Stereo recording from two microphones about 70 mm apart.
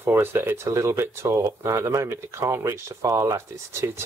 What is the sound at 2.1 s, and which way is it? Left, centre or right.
Speech, right.